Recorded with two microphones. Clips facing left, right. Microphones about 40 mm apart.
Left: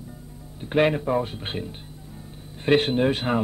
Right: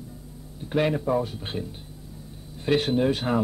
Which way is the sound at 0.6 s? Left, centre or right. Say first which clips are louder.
Left 3 dB; left.